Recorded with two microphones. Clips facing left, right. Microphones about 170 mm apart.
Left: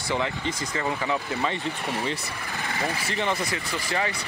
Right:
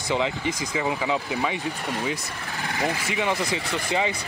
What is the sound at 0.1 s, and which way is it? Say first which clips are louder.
Speech: right 3 dB; 15° right (ahead or behind).